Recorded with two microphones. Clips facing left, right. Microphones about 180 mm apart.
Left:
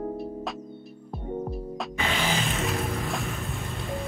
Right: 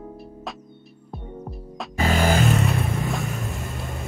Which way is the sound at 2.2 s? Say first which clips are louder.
Right 10 dB; 55° right (ahead or behind).